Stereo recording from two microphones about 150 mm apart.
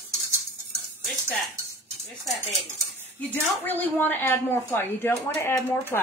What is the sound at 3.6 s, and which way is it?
Speech, 10° left (ahead or behind).